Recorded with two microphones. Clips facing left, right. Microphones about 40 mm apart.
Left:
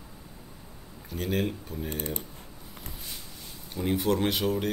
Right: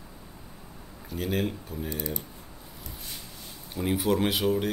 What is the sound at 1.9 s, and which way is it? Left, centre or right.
Speech, left.